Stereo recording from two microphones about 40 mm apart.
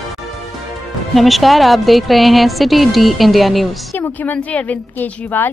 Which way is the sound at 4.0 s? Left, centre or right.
Left.